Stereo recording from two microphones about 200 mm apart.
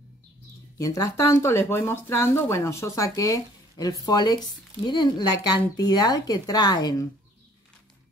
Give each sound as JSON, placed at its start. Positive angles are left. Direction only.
{"t": 0.7, "sound": "speech", "side_deg": 15}